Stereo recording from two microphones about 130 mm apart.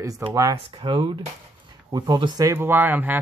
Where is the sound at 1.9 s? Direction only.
30° right (ahead or behind); by 3.2 s 15° right (ahead or behind).